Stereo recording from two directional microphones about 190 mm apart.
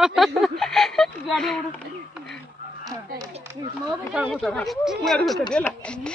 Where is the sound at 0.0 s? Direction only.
Centre (ahead or behind).